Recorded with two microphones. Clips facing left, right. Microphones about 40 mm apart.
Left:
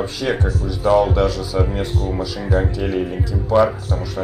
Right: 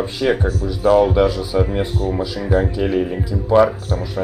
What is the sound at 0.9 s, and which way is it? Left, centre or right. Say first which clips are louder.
Speech: right 2 dB; centre.